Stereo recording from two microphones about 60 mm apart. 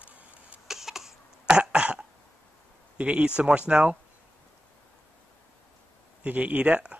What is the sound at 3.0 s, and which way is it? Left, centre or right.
Speech, centre.